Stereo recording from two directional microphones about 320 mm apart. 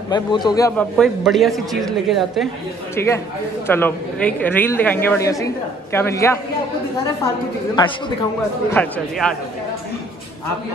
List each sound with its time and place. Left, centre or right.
0.1 s a woman's voice: centre
8.7 s a woman's voice: centre